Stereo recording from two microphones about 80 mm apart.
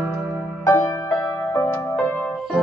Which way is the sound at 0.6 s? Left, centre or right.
Left.